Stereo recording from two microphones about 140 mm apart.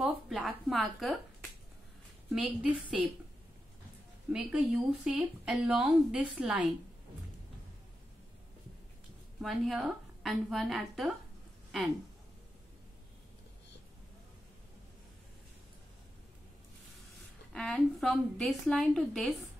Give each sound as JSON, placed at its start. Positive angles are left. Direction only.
{"t": 0.0, "sound": "a sound", "side_deg": 0}
{"t": 2.3, "sound": "speech", "side_deg": -10}
{"t": 4.3, "sound": "speech", "side_deg": -5}
{"t": 9.4, "sound": "a woman's voice", "side_deg": 0}
{"t": 17.5, "sound": "a sound", "side_deg": 5}
{"t": 18.0, "sound": "a woman's voice", "side_deg": 0}